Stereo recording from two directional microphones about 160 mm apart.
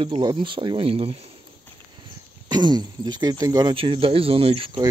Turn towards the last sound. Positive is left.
turn(degrees=-35)  # may be behind; listen again after turning